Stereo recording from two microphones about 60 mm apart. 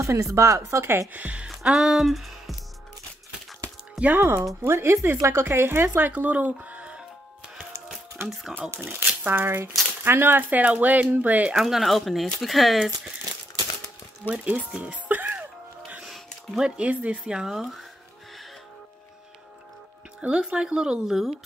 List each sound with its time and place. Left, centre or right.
0.0 s speech: right
1.1 s speech: right
1.6 s speech: centre
4.0 s speech: right
4.6 s speech: right
8.2 s speech: right
11.5 s speech: centre
14.3 s speech: right
14.8 s music: right
16.6 s speech: centre
20.2 s speech: centre